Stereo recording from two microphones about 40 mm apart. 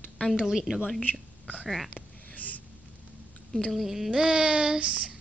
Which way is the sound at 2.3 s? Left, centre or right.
Left.